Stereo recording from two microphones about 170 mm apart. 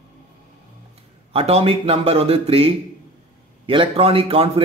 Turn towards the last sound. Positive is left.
turn(degrees=-35)  # may be behind; listen again after turning